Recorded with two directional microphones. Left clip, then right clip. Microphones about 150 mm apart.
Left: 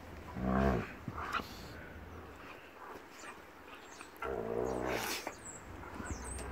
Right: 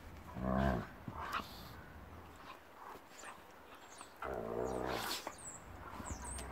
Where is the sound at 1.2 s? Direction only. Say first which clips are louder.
Left 3 dB; 10° left (ahead or behind).